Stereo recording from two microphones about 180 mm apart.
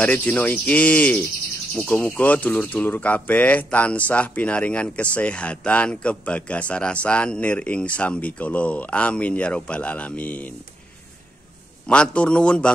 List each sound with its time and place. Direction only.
0.0 s a man's voice: 5° left (ahead or behind)
11.9 s a man's voice: 5° left (ahead or behind)